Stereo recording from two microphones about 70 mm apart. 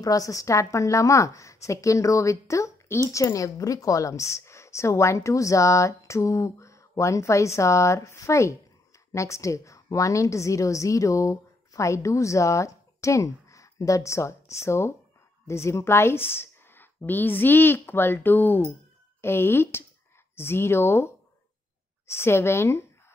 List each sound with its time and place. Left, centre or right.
0.0 s a woman's voice: left